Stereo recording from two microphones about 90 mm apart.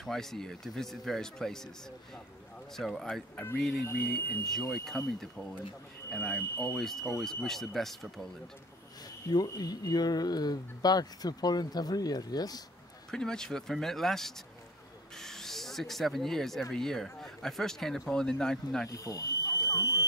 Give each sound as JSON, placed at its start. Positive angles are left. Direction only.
{"t": 0.0, "sound": "speech", "side_deg": 5}
{"t": 2.7, "sound": "speech", "side_deg": 0}
{"t": 3.8, "sound": "speech", "side_deg": 30}
{"t": 4.8, "sound": "speech", "side_deg": 5}
{"t": 6.0, "sound": "speech", "side_deg": 15}
{"t": 6.5, "sound": "speech", "side_deg": 30}
{"t": 6.8, "sound": "speech", "side_deg": 5}
{"t": 9.6, "sound": "speech", "side_deg": 45}
{"t": 13.1, "sound": "speech", "side_deg": 5}
{"t": 18.9, "sound": "speech", "side_deg": 40}